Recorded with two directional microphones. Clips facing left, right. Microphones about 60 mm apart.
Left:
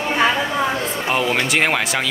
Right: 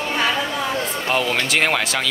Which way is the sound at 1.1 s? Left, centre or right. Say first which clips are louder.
Left 1 dB; centre.